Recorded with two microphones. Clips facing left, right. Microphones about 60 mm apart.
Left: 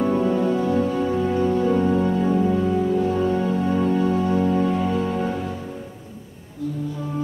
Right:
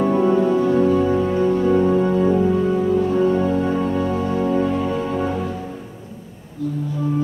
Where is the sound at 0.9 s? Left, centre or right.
Centre.